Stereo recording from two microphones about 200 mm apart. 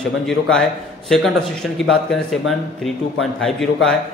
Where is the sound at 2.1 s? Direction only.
Centre (ahead or behind).